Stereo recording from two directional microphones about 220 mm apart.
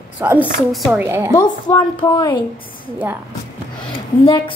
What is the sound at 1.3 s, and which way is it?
A woman's voice, 20° left (ahead or behind).